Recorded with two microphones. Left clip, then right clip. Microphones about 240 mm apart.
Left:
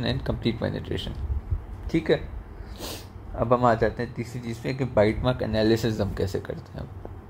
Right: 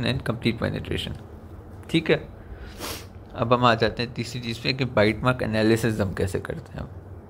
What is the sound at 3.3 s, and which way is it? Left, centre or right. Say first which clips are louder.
Speech: right 1 dB; centre.